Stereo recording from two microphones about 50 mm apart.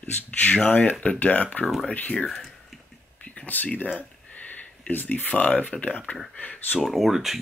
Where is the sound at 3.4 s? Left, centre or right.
Left.